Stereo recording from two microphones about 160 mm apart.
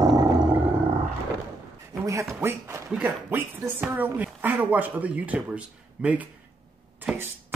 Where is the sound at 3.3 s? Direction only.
15° right (ahead or behind).